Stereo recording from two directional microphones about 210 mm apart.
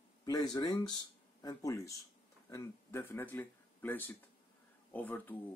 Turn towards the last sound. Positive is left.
turn(degrees=10)  # may be behind; listen again after turning